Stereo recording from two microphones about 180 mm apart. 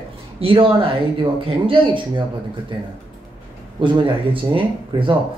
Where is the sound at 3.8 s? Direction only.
25° right (ahead or behind).